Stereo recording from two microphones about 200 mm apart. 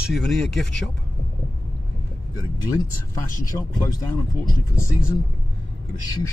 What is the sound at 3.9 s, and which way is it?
Speech, 20° left (ahead or behind).